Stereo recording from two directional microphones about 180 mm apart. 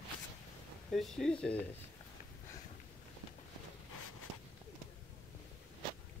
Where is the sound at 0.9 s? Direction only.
Centre (ahead or behind).